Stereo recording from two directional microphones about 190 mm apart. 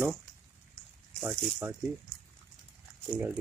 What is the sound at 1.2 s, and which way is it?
Speech, 15° right (ahead or behind).